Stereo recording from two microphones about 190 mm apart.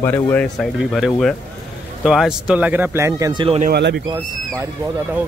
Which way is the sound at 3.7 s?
60° right (ahead or behind).